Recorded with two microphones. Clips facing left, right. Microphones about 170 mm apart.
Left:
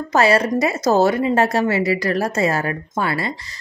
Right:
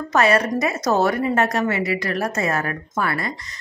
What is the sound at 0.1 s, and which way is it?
A woman's voice, 30° left (ahead or behind).